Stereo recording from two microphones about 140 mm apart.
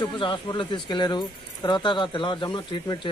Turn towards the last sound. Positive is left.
turn(degrees=35)  # may be behind; listen again after turning